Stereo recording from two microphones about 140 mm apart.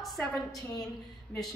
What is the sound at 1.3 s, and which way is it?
Speech, 10° left (ahead or behind).